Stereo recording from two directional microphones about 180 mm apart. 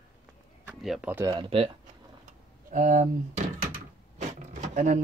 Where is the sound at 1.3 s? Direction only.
30° right (ahead or behind).